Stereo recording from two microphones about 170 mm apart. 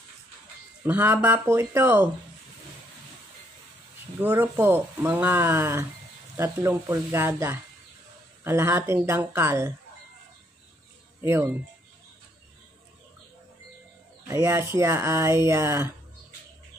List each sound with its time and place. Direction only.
0.8 s speech: 10° right (ahead or behind)
4.2 s speech: 10° right (ahead or behind)
11.1 s speech: 15° right (ahead or behind)
14.2 s speech: 20° right (ahead or behind)